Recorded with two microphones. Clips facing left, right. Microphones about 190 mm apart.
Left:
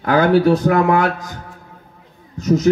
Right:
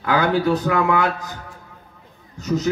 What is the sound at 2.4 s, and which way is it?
Speech, 40° left (ahead or behind).